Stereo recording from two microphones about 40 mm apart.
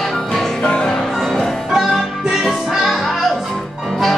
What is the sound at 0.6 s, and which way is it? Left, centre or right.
Music, centre.